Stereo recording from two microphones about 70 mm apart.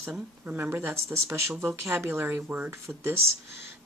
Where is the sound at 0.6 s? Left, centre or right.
Right.